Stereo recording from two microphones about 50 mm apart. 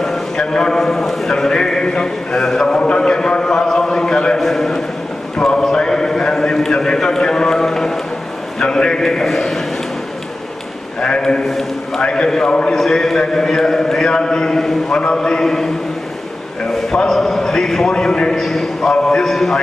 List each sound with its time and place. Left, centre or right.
0.0 s a sound: centre
4.4 s a sound: centre
8.5 s a man's voice: centre
11.0 s a man's voice: centre
12.0 s a man's voice: centre
12.7 s a man's voice: centre
17.1 s a man's voice: centre
18.4 s a man's voice: centre